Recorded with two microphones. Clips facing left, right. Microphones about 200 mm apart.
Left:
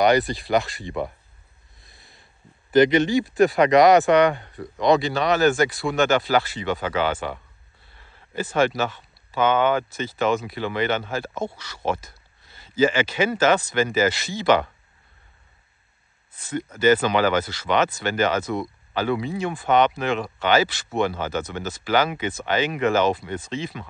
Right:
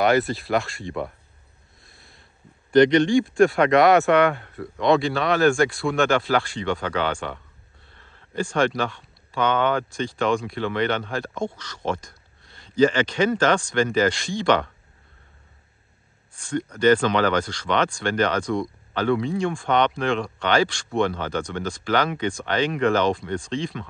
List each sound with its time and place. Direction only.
0.0 s speech: centre (ahead or behind)
1.9 s a sound: centre (ahead or behind)
2.7 s speech: 5° left (ahead or behind)
16.3 s speech: 5° left (ahead or behind)